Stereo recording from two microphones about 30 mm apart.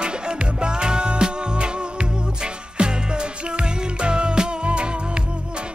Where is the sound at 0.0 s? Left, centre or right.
Right.